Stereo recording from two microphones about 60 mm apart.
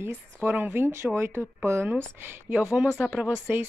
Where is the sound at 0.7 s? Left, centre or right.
Right.